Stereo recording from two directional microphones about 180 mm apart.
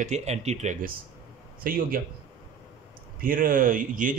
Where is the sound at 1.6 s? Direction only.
50° right (ahead or behind).